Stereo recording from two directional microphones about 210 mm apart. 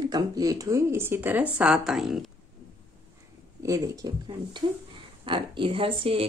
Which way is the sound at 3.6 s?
15° right (ahead or behind).